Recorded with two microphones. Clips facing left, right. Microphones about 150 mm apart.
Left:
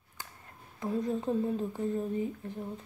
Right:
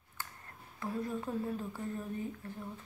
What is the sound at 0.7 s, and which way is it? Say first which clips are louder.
A woman's voice: left 5 dB; 20° left (ahead or behind).